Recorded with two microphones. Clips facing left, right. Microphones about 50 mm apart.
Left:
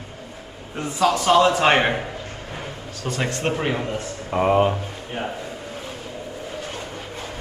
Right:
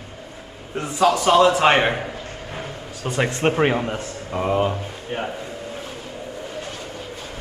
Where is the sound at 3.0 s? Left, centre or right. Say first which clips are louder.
Right 4 dB; centre.